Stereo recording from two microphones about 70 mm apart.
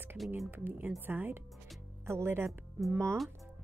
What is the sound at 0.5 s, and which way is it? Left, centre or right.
Speech, right.